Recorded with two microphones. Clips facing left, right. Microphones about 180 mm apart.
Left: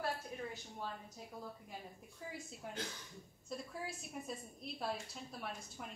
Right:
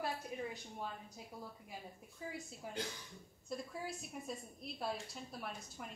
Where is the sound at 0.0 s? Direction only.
15° right (ahead or behind).